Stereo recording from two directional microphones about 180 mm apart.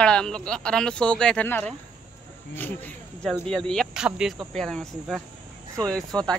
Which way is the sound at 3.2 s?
5° left (ahead or behind).